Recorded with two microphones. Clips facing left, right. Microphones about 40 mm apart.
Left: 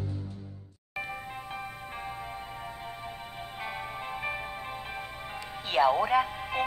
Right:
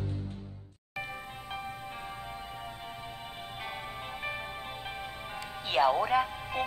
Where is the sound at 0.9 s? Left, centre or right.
Centre.